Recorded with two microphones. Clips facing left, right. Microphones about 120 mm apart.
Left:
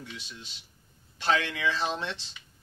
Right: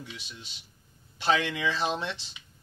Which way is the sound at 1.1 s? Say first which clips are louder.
Right 1 dB; 15° right (ahead or behind).